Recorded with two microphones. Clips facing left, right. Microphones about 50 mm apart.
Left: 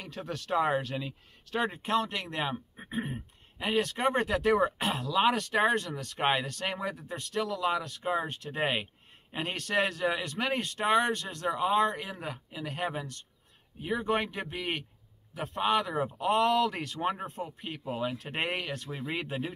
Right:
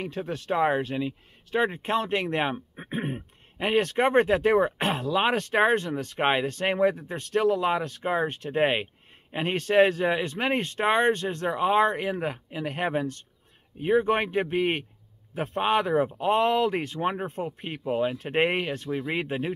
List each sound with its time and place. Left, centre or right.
0.0 s speech: right
17.3 s speech: right